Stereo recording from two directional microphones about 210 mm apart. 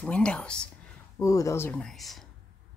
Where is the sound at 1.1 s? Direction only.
15° left (ahead or behind).